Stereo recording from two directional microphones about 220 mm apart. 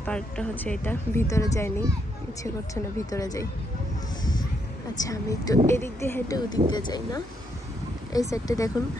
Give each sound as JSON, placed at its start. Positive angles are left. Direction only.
{"t": 0.0, "sound": "speech", "side_deg": 5}
{"t": 5.0, "sound": "speech", "side_deg": 15}